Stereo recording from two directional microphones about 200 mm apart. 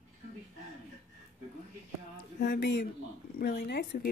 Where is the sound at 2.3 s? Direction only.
55° left (ahead or behind).